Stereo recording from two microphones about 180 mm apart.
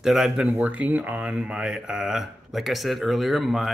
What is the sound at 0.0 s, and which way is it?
Speech, 5° right (ahead or behind).